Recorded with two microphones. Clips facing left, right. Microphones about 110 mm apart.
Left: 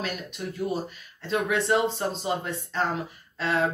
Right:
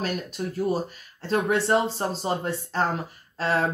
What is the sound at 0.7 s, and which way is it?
Speech, 40° right (ahead or behind).